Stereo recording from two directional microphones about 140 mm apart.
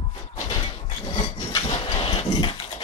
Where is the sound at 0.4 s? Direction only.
30° left (ahead or behind).